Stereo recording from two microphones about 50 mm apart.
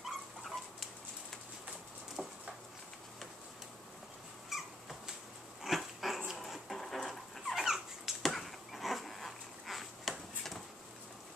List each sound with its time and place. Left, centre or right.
0.0 s dog: centre
2.2 s a sound: right
4.5 s squeak: centre
5.6 s dog: centre